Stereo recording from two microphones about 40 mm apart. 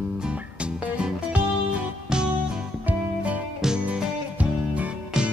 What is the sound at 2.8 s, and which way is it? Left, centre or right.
Music, right.